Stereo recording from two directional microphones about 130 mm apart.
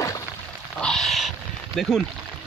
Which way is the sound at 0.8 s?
5° left (ahead or behind).